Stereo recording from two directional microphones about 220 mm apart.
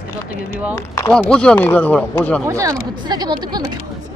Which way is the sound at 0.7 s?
10° left (ahead or behind).